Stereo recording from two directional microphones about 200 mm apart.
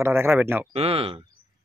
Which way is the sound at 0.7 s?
30° right (ahead or behind).